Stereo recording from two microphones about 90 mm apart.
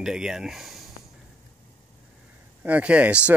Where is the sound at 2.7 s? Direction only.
15° right (ahead or behind).